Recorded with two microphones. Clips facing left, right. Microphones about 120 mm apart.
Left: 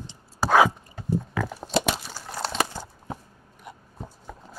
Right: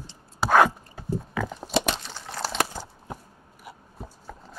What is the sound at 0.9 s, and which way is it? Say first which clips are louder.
Crunch: left 2 dB; centre (ahead or behind).